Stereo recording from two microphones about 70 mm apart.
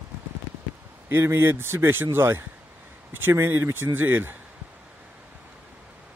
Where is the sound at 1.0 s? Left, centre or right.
Right.